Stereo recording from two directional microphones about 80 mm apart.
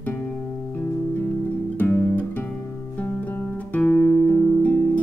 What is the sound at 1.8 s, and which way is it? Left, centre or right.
Music, left.